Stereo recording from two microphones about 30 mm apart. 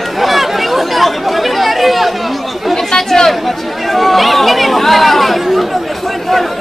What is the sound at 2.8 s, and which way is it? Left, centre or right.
Chatter, centre.